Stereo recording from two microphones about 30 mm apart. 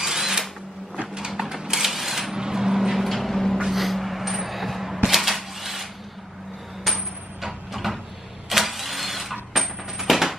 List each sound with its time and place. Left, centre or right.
0.0 s drill: centre
1.7 s mechanisms: centre
2.3 s a sound: centre
3.0 s vehicle: centre
3.6 s a sound: centre
7.4 s vehicle: centre